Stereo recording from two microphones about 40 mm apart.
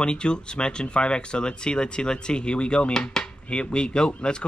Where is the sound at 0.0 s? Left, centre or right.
Left.